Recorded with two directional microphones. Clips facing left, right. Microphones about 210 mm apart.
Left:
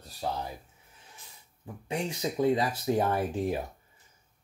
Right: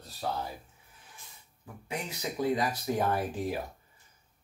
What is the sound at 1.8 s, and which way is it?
Speech, 30° left (ahead or behind).